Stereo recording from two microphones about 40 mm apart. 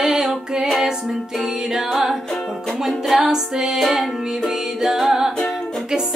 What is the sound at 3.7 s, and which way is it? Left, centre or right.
Music, centre.